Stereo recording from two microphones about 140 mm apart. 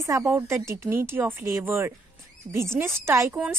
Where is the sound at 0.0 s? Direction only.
20° right (ahead or behind).